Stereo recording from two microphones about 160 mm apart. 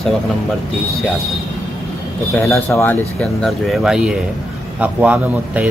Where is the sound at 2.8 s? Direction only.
10° left (ahead or behind).